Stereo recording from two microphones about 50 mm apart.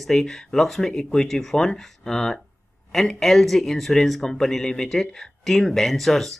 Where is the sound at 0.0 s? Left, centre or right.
Centre.